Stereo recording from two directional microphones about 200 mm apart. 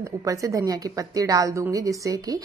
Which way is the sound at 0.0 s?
15° right (ahead or behind).